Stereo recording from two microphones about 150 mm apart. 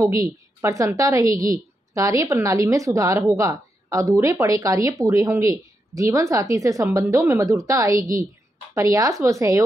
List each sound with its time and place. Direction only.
0.0 s a woman's voice: 20° right (ahead or behind)